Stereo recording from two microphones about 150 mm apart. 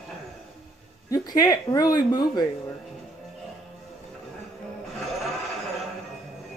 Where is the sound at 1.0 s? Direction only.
25° left (ahead or behind).